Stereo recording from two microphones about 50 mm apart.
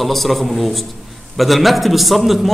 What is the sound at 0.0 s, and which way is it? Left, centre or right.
A man's voice, centre.